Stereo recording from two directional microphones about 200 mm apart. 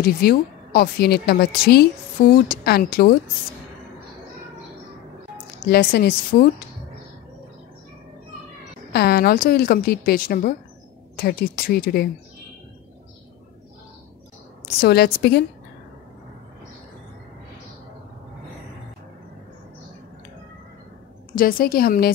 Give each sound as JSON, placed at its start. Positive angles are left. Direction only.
{"t": 0.0, "sound": "a woman's voice", "side_deg": 50}
{"t": 5.7, "sound": "a woman's voice", "side_deg": 50}
{"t": 8.9, "sound": "a woman's voice", "side_deg": 50}
{"t": 14.8, "sound": "a woman's voice", "side_deg": 55}
{"t": 21.4, "sound": "a woman's voice", "side_deg": 45}